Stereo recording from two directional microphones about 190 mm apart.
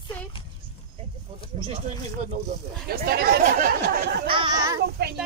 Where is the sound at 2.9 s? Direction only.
55° right (ahead or behind).